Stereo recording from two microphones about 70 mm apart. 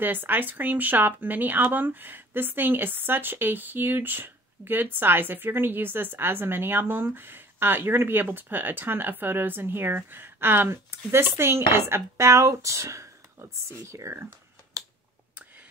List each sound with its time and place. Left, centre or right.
0.0 s speech: right